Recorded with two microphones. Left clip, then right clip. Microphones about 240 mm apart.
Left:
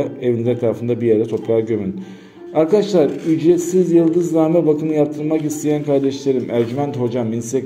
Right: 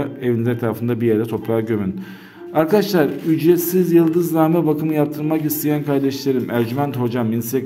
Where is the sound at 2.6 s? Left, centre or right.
Right.